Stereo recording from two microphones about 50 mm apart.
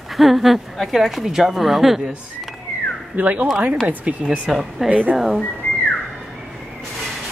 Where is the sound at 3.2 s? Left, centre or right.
Right.